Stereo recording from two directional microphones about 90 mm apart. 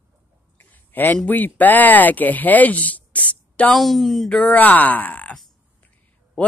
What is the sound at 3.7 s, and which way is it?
Speech, centre (ahead or behind).